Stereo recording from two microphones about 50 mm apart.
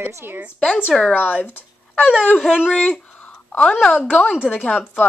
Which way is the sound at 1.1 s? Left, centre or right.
Left.